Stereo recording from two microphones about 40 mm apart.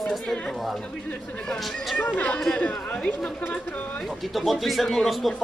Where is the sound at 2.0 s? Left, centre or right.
Left.